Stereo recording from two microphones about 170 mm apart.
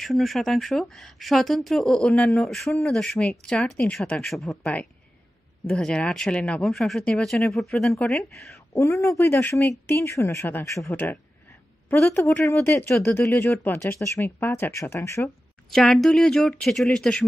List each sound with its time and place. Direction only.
0.0 s a woman's voice: centre (ahead or behind)
8.7 s speech: 15° left (ahead or behind)
15.7 s speech: centre (ahead or behind)